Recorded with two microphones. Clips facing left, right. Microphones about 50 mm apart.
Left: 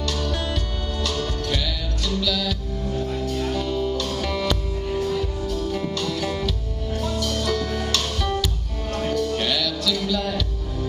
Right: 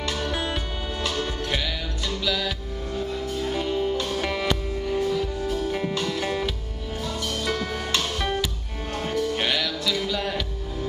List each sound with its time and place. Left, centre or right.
0.0 s music: centre